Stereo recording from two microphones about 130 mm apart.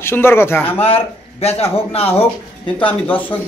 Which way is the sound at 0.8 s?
50° left (ahead or behind).